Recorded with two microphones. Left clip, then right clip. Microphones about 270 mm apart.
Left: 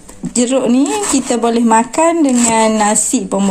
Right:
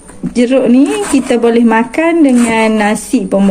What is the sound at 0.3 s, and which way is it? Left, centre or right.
Speech, centre.